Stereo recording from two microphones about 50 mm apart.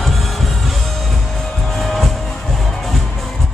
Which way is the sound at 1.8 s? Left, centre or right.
Centre.